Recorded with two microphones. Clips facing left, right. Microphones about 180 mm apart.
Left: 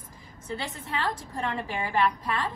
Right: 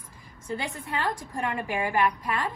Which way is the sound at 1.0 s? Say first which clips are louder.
Right 1 dB; 10° right (ahead or behind).